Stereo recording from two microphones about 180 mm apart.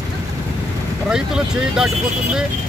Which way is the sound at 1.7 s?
5° right (ahead or behind).